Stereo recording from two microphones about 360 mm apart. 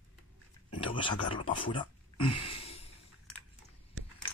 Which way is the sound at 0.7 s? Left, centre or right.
Centre.